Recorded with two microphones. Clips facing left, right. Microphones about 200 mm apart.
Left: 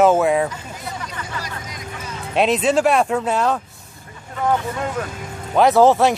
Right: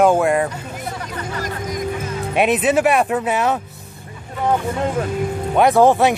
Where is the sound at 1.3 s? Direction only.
50° right (ahead or behind).